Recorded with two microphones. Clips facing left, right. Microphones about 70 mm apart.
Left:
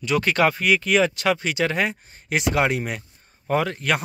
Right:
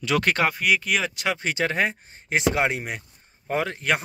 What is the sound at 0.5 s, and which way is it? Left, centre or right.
Speech, centre.